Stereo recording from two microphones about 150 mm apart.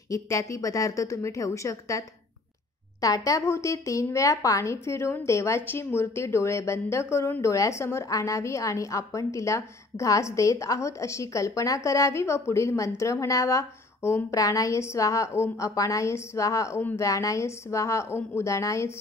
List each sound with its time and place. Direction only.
0.1 s a woman's voice: 20° left (ahead or behind)